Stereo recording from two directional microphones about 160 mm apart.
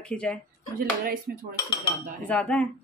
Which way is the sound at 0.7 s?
65° right (ahead or behind).